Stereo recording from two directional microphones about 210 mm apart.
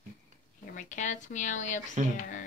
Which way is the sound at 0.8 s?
35° left (ahead or behind).